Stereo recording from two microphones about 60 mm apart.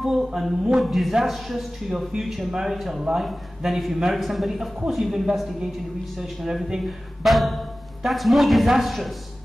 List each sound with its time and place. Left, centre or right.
0.0 s a man's voice: centre